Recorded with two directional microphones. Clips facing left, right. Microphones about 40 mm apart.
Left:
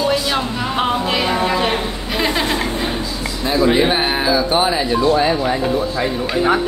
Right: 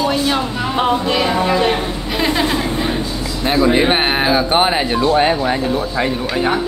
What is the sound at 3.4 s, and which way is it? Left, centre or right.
Speech, right.